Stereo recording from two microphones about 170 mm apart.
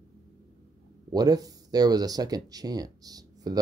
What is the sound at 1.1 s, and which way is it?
Speech, 20° right (ahead or behind).